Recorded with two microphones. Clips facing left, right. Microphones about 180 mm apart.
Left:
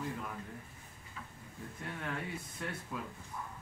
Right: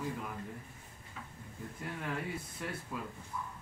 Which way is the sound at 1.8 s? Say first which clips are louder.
Right 2 dB; 5° right (ahead or behind).